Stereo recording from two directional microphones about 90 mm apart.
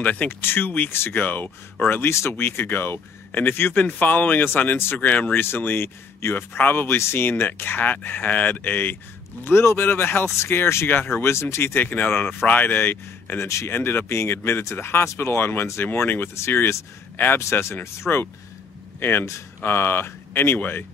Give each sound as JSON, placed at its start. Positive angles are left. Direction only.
{"t": 0.0, "sound": "speech", "side_deg": 15}